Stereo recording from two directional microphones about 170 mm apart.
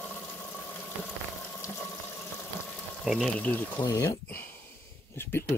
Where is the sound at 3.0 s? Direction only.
Centre (ahead or behind).